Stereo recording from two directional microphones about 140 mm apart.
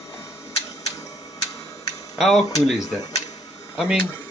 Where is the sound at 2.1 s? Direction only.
Centre (ahead or behind).